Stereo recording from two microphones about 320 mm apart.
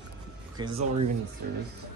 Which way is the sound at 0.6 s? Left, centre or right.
Centre.